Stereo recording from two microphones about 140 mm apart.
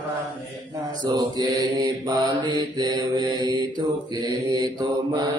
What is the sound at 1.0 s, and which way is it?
Mantra, 25° right (ahead or behind).